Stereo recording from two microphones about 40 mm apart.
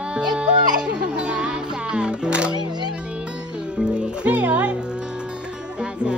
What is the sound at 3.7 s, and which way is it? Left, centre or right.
Music, right.